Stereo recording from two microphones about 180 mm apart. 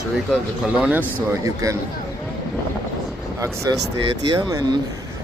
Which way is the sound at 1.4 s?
20° right (ahead or behind).